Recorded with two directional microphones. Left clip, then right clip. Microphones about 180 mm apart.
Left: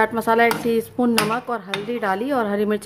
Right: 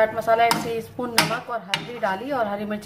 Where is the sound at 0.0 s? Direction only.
50° left (ahead or behind).